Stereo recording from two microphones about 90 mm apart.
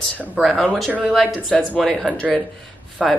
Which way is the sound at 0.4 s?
Centre (ahead or behind).